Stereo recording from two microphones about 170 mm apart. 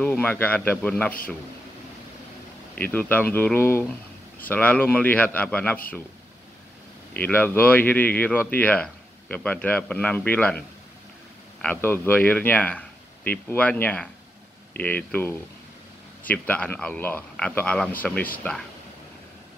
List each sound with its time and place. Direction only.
0.0 s speech: 10° left (ahead or behind)
2.7 s speech: 10° left (ahead or behind)
7.2 s speech: 10° left (ahead or behind)
11.6 s speech: 10° left (ahead or behind)